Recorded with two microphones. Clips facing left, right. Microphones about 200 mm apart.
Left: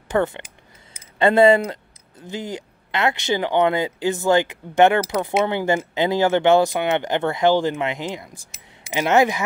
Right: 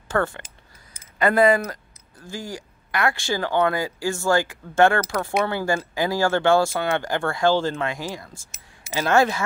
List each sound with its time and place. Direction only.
0.1 s speech: 20° left (ahead or behind)